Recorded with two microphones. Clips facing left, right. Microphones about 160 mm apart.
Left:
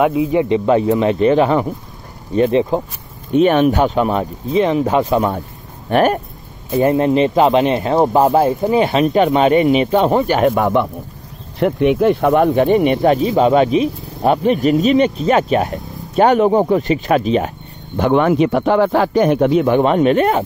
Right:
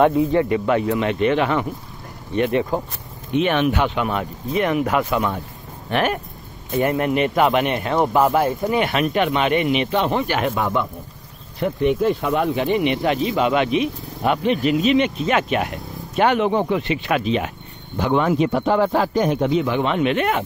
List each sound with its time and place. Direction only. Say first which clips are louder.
0.0 s speech: left 1 dB; 5° left (ahead or behind)
0.5 s speech: left 5 dB; 30° left (ahead or behind)
3.3 s speech: left 6 dB; 40° left (ahead or behind)
6.7 s speech: left 6 dB; 30° left (ahead or behind)
10.5 s a man's voice: left 7 dB; 55° left (ahead or behind)
11.6 s speech: left 5 dB; 70° left (ahead or behind); by 17.5 s 40° left (ahead or behind)
17.9 s a man's voice: left 5 dB; 60° left (ahead or behind); by 20.4 s 35° left (ahead or behind)